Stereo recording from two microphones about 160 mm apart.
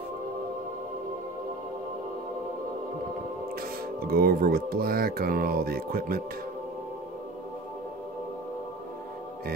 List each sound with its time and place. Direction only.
4.0 s speech: 70° right (ahead or behind)